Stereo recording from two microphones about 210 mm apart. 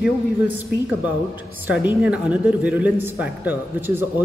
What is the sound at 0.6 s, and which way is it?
A woman's voice, 10° right (ahead or behind).